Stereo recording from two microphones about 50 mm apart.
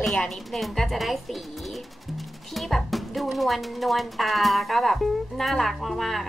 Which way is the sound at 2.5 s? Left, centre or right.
Centre.